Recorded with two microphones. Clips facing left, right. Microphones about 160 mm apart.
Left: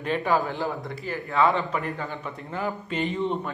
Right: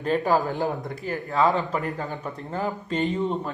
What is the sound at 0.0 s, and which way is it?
Speech, 40° right (ahead or behind).